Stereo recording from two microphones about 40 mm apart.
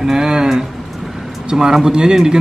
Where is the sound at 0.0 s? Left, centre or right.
Centre.